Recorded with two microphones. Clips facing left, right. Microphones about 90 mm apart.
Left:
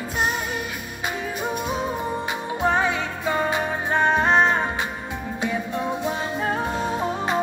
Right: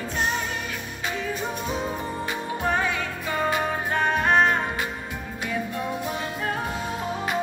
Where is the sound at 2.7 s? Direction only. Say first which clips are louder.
Left 3 dB; 25° left (ahead or behind).